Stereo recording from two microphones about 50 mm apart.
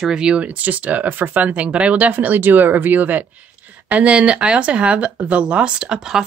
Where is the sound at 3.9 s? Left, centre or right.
Right.